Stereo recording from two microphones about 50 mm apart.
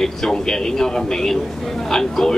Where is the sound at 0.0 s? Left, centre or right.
Centre.